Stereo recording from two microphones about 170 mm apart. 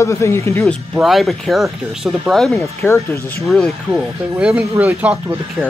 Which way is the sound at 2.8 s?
15° left (ahead or behind).